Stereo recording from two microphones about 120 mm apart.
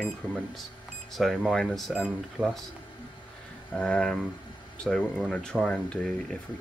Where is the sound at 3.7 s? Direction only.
5° left (ahead or behind).